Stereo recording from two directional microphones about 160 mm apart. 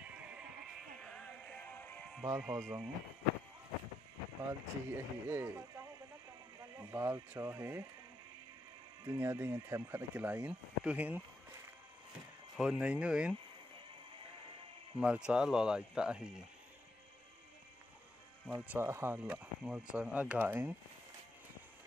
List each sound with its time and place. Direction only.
0.0 s music: 10° right (ahead or behind)
2.3 s speech: 5° right (ahead or behind)
4.5 s speech: 15° right (ahead or behind)
6.6 s speech: 20° right (ahead or behind)
9.0 s speech: 20° right (ahead or behind)
12.5 s speech: 5° right (ahead or behind)
15.0 s speech: 5° right (ahead or behind)
18.5 s speech: 15° right (ahead or behind)